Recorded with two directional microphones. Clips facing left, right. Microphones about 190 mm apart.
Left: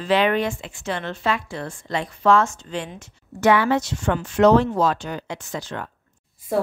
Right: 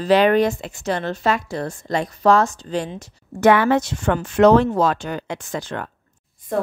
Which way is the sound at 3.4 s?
50° right (ahead or behind).